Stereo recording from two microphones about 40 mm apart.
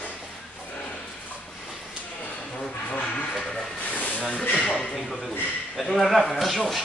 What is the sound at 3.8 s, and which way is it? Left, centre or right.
Snake, left.